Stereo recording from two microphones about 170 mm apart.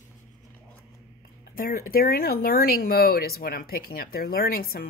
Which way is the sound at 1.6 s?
60° left (ahead or behind).